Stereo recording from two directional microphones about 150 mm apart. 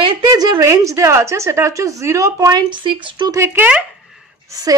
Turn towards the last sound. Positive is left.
turn(degrees=-25)  # may be behind; listen again after turning